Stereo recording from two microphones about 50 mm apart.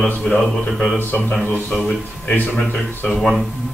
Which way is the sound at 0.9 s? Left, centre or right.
Left.